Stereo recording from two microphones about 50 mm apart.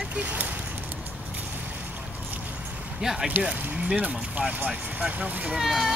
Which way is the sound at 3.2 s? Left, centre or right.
Right.